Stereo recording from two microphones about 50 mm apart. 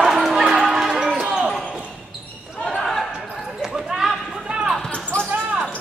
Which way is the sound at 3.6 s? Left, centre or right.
Centre.